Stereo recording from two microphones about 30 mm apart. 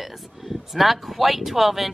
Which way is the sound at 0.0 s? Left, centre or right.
Centre.